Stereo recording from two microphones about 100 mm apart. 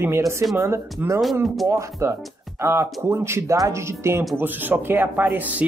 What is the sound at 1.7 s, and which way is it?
Speech, 30° right (ahead or behind).